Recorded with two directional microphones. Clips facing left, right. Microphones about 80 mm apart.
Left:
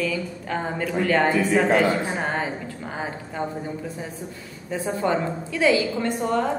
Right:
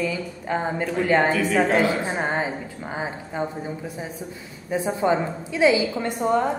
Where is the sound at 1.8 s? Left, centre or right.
Centre.